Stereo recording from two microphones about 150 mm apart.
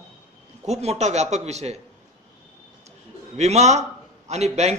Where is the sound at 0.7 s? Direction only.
45° right (ahead or behind).